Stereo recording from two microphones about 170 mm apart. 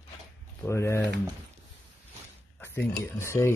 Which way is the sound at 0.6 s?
15° left (ahead or behind).